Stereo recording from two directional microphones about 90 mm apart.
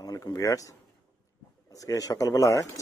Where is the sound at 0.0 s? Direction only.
45° left (ahead or behind).